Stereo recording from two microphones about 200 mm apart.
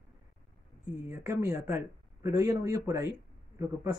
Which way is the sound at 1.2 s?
10° right (ahead or behind).